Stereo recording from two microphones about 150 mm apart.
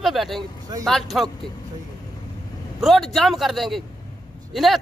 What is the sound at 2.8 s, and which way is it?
A woman's voice, centre (ahead or behind).